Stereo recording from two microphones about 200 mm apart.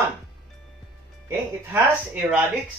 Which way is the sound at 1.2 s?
10° right (ahead or behind).